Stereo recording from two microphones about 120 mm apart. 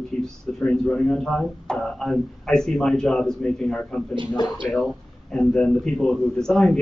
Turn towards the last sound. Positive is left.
turn(degrees=5)  # may be behind; listen again after turning